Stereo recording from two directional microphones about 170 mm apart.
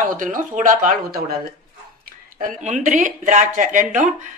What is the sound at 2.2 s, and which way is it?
Speech, 50° right (ahead or behind).